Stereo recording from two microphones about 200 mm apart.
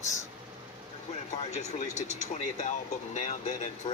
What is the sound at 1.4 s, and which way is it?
Speech, 35° left (ahead or behind).